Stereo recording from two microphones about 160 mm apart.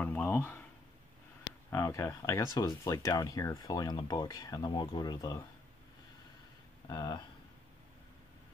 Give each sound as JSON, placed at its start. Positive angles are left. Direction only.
{"t": 0.0, "sound": "a sound", "side_deg": 10}
{"t": 1.7, "sound": "speech", "side_deg": 20}
{"t": 6.9, "sound": "speech", "side_deg": 25}